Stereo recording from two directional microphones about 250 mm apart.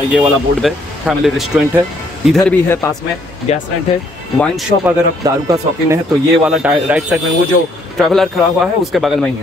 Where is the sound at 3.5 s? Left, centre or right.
Left.